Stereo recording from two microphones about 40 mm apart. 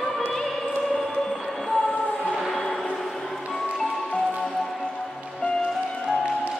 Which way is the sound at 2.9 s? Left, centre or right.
Centre.